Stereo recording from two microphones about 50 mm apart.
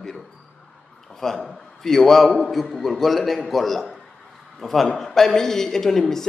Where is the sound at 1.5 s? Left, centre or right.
Centre.